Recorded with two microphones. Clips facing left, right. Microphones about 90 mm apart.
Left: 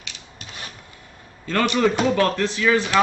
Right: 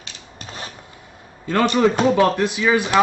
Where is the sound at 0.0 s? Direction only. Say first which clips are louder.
Right 3 dB; 35° right (ahead or behind).